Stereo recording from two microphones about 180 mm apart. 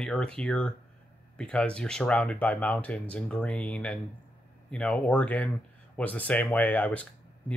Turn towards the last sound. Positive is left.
turn(degrees=10)  # may be behind; listen again after turning